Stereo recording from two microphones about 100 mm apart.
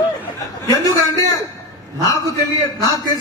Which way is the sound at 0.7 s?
35° left (ahead or behind).